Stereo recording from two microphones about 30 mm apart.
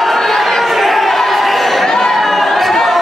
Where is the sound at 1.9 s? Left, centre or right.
Centre.